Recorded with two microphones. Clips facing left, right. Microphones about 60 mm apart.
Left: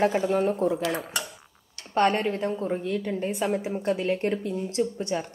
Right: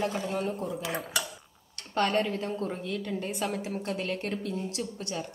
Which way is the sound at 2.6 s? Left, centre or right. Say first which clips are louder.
Left 6 dB; centre.